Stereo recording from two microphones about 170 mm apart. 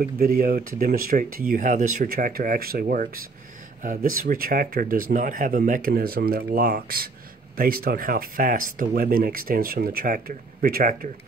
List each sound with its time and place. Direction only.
0.2 s speech: 60° right (ahead or behind)